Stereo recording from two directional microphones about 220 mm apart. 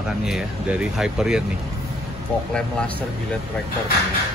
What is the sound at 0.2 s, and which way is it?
Speech, 5° right (ahead or behind).